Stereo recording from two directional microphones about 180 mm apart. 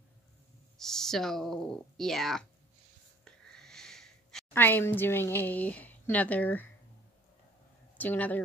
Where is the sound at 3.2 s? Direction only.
5° left (ahead or behind).